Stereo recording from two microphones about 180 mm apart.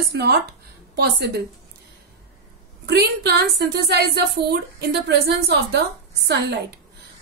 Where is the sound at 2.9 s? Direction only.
65° right (ahead or behind).